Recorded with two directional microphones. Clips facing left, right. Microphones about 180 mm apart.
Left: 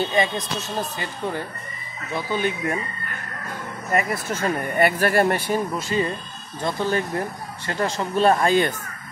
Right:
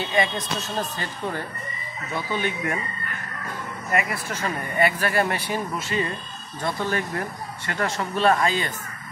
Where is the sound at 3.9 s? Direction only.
40° left (ahead or behind).